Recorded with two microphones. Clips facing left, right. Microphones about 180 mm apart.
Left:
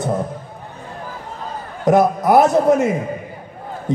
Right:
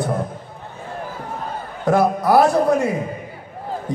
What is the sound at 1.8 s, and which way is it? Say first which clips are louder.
A man's voice: left 3 dB; 20° left (ahead or behind).